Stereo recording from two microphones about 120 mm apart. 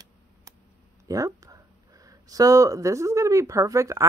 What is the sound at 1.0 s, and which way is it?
Speech, 30° right (ahead or behind).